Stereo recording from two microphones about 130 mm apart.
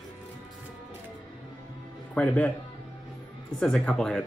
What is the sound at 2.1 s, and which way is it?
Speech, 10° left (ahead or behind).